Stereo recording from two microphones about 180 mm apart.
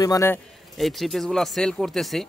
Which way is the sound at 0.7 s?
Centre (ahead or behind).